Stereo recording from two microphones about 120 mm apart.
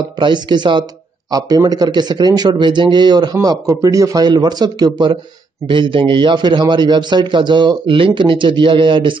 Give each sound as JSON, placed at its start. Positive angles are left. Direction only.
{"t": 0.2, "sound": "a man's voice", "side_deg": -40}